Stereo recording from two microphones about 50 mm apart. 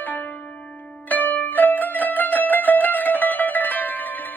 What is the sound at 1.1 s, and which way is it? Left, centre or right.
Music, left.